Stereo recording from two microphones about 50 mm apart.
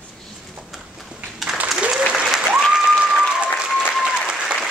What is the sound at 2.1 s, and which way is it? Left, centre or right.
Applause, centre.